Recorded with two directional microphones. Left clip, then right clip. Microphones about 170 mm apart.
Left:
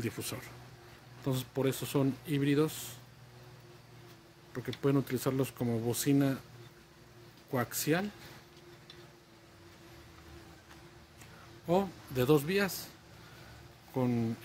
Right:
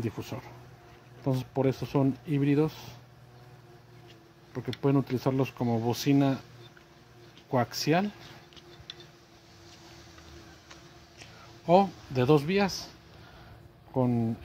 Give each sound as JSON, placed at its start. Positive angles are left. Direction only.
{"t": 0.0, "sound": "speech", "side_deg": -25}
{"t": 4.8, "sound": "speech", "side_deg": -25}
{"t": 7.5, "sound": "speech", "side_deg": -30}
{"t": 11.6, "sound": "speech", "side_deg": -25}
{"t": 13.9, "sound": "speech", "side_deg": -25}